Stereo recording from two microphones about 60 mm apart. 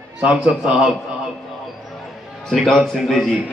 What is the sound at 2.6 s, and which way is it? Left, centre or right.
Speech, centre.